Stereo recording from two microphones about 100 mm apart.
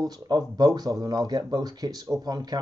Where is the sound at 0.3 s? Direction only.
40° right (ahead or behind).